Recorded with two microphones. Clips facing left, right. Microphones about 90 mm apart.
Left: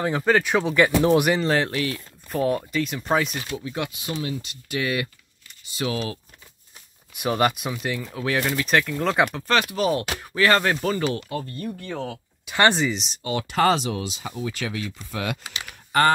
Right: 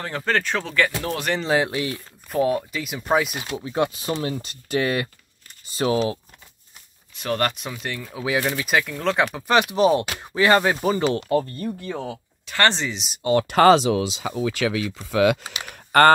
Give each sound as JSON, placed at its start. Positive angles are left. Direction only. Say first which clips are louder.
{"t": 0.0, "sound": "speech", "louder": "left 4 dB", "side_deg": 10}
{"t": 1.3, "sound": "speech", "louder": "even", "side_deg": 0}
{"t": 1.6, "sound": "speech", "louder": "right 1 dB", "side_deg": -15}
{"t": 2.2, "sound": "speech", "louder": "right 2 dB", "side_deg": -5}
{"t": 3.5, "sound": "speech", "louder": "right 8 dB", "side_deg": -25}
{"t": 7.2, "sound": "speech", "louder": "left 2 dB", "side_deg": 10}
{"t": 8.1, "sound": "speech", "louder": "right 3 dB", "side_deg": -10}
{"t": 9.4, "sound": "speech", "louder": "right 4 dB", "side_deg": -20}
{"t": 11.1, "sound": "speech", "louder": "right 9 dB", "side_deg": -50}
{"t": 11.5, "sound": "speech", "louder": "right 2 dB", "side_deg": -20}
{"t": 12.4, "sound": "speech", "louder": "left 2 dB", "side_deg": 10}
{"t": 13.2, "sound": "speech", "louder": "right 9 dB", "side_deg": -40}
{"t": 13.5, "sound": "speech", "louder": "right 5 dB", "side_deg": -80}
{"t": 15.7, "sound": "a sound", "louder": "right 5 dB", "side_deg": -60}